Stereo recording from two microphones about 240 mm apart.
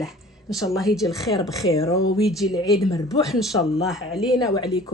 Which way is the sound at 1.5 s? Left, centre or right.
Centre.